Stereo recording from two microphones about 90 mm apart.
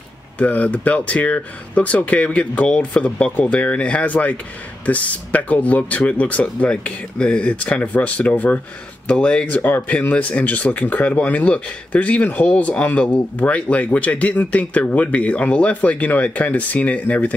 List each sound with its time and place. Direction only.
0.4 s speech: 15° left (ahead or behind)